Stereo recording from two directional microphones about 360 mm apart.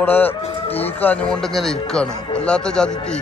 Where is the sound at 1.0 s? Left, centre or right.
Centre.